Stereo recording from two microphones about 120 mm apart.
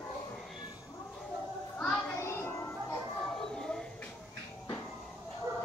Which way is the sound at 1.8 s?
5° left (ahead or behind).